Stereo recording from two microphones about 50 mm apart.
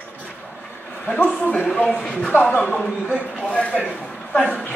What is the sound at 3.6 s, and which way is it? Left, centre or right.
Speech, left.